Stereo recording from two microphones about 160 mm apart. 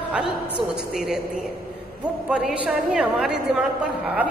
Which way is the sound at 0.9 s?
5° right (ahead or behind).